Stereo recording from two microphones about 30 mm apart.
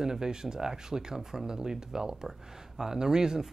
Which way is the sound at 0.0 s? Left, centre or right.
Right.